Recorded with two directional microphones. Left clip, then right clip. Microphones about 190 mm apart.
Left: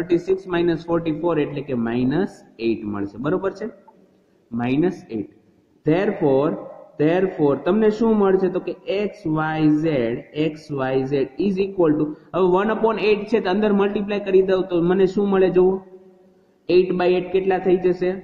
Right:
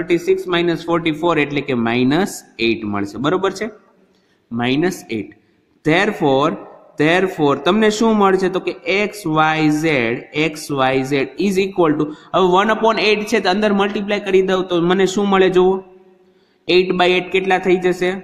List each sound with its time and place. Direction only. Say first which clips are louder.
0.1 s speech: right 5 dB; 15° right (ahead or behind)
4.6 s speech: right 3 dB; 40° right (ahead or behind)
16.7 s speech: right 3 dB; 40° right (ahead or behind)